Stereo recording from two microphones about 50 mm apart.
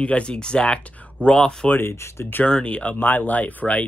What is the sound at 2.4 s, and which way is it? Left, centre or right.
Speech, left.